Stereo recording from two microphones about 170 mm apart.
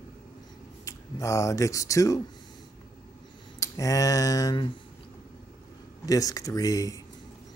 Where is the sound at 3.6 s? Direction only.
20° left (ahead or behind).